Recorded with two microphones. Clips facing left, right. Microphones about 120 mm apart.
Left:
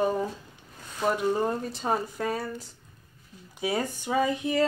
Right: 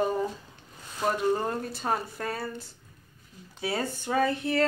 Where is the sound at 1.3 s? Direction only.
15° left (ahead or behind).